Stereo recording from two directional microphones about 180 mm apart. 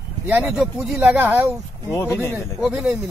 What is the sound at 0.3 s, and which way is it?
Speech, 10° right (ahead or behind).